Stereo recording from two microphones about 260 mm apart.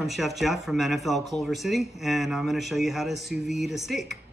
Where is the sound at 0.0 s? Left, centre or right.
Centre.